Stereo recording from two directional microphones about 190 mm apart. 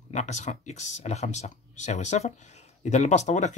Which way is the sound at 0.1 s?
35° left (ahead or behind).